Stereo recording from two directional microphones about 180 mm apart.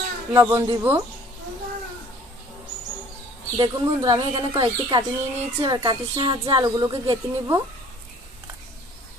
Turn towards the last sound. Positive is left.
turn(degrees=-20)  # may be behind; listen again after turning